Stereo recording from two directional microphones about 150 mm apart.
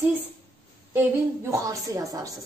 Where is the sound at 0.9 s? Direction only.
15° right (ahead or behind).